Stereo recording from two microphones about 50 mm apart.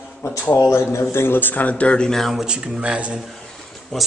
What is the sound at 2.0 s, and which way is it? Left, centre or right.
Speech, centre.